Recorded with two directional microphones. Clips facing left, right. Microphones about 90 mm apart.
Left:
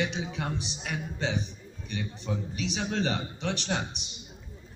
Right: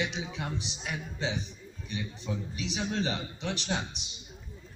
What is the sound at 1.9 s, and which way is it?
A man's voice, 45° left (ahead or behind).